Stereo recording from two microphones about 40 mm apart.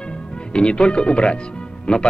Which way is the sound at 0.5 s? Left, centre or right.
Left.